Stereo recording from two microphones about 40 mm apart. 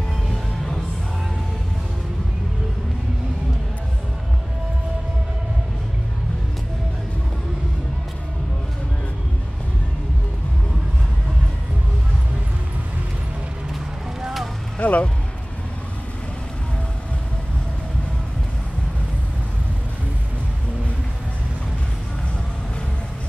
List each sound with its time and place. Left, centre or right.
0.3 s music: centre
14.8 s music: left